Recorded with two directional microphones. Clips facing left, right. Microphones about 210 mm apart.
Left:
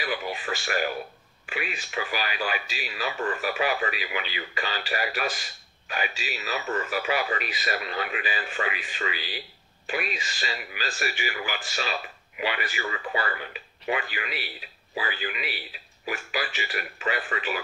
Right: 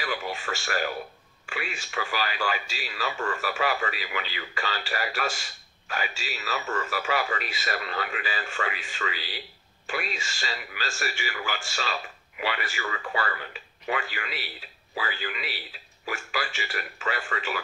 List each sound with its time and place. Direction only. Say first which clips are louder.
0.0 s radio: left 1 dB; 15° left (ahead or behind)
1.5 s speech: left 2 dB; 15° left (ahead or behind)